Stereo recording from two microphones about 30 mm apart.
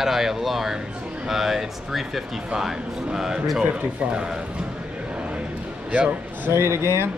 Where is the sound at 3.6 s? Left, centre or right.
Right.